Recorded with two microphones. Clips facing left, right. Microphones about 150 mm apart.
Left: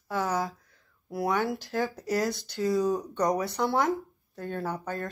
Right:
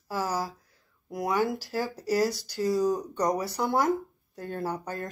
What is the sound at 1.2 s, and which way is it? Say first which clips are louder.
Speech: right 1 dB; centre (ahead or behind).